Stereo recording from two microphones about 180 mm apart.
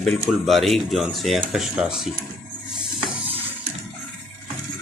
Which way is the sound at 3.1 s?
30° right (ahead or behind).